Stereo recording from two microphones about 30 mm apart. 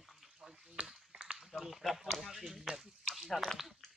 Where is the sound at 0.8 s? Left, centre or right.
Right.